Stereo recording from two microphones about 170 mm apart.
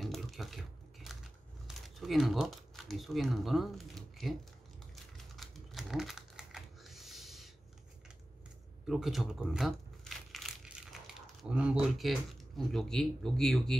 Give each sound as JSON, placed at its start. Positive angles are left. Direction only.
{"t": 0.0, "sound": "a sound", "side_deg": 0}
{"t": 2.0, "sound": "speech", "side_deg": 0}
{"t": 5.1, "sound": "typing", "side_deg": 0}
{"t": 8.8, "sound": "crumpling", "side_deg": 0}
{"t": 12.0, "sound": "speech", "side_deg": 0}